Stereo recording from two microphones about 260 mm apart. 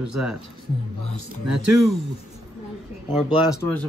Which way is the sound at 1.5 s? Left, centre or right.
Right.